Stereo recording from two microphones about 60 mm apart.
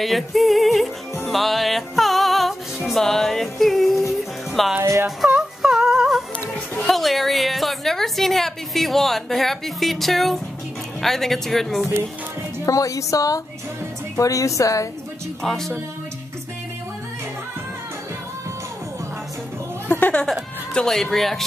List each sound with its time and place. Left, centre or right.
0.0 s a woman's voice: centre
1.3 s music: centre
5.0 s yodeling: centre
6.8 s a woman's voice: centre
12.6 s a woman's voice: left
15.4 s a woman's voice: centre
19.9 s music: left
20.7 s a woman's voice: centre